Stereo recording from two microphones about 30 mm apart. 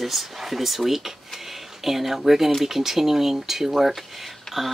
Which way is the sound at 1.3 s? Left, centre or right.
Centre.